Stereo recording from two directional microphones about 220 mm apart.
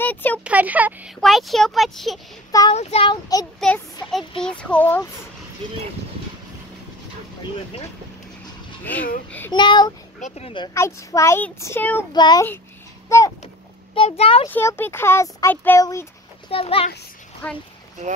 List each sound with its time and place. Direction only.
0.0 s speech: 10° left (ahead or behind)
0.4 s speech: 5° right (ahead or behind)
2.7 s speech: 30° left (ahead or behind)
3.5 s speech: 5° left (ahead or behind)
9.5 s speech: 20° left (ahead or behind)
13.9 s speech: 25° left (ahead or behind)
14.5 s speech: 10° left (ahead or behind)
16.4 s speech: 25° left (ahead or behind)